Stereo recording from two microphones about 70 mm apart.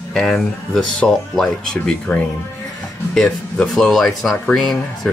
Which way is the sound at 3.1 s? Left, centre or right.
Centre.